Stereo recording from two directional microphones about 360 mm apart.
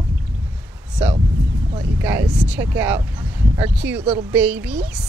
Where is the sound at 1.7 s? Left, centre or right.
Centre.